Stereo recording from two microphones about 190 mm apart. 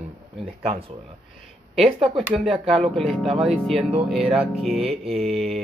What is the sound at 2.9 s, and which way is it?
Mantra, 5° left (ahead or behind).